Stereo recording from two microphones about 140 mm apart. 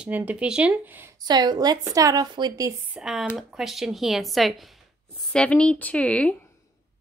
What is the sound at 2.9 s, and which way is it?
A woman's voice, 5° right (ahead or behind).